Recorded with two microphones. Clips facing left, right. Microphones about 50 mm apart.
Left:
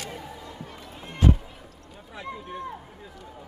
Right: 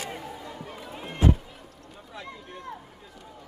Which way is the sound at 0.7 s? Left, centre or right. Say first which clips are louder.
Right 3 dB; centre.